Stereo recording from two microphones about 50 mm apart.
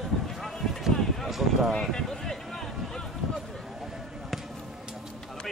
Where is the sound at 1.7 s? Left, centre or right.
Centre.